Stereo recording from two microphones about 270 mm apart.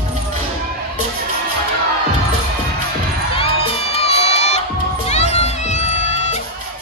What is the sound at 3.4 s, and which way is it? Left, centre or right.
Crowd, left.